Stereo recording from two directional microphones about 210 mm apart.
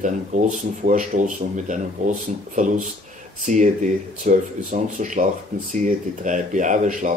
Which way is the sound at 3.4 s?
35° right (ahead or behind).